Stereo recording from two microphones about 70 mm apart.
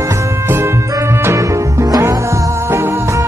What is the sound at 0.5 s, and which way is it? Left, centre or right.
Music, right.